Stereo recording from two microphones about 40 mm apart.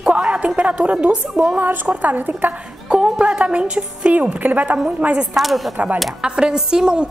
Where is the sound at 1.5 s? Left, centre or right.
Right.